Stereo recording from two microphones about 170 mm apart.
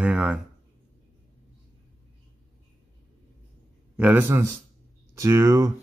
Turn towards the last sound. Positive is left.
turn(degrees=-20)  # may be behind; listen again after turning